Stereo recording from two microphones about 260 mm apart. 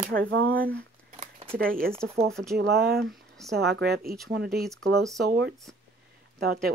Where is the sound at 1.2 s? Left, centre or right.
Right.